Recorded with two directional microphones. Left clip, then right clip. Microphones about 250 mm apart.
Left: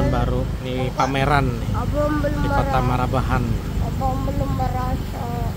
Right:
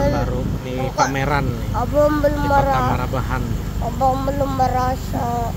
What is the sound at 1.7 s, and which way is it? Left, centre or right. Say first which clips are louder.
Speech: right 7 dB; right.